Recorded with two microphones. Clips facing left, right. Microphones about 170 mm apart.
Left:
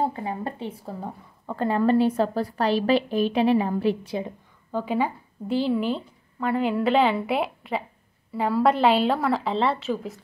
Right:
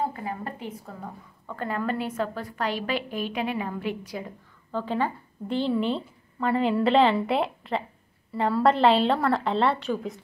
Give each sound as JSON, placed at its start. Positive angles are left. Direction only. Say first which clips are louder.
{"t": 0.0, "sound": "a woman's voice", "louder": "left 3 dB", "side_deg": 25}
{"t": 4.7, "sound": "a woman's voice", "louder": "left 2 dB", "side_deg": 10}